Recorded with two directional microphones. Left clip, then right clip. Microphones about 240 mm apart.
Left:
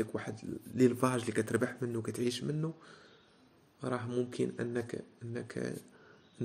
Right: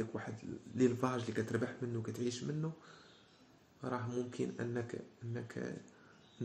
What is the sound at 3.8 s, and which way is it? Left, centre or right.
Speech, left.